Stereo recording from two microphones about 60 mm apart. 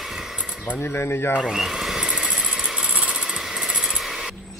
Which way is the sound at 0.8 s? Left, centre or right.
Left.